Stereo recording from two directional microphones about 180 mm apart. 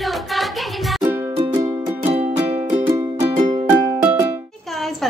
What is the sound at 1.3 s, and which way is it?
Music, 30° right (ahead or behind).